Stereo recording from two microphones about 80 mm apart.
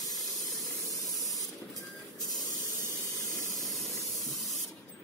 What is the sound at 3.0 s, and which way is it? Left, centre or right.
Steam, left.